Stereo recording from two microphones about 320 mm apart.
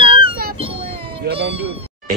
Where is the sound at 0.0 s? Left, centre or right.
Centre.